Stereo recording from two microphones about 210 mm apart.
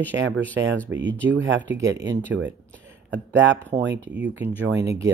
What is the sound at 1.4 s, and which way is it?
Speech, 60° right (ahead or behind).